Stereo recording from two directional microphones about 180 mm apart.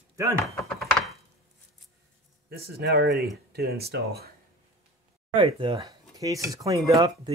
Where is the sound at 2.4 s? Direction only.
60° right (ahead or behind).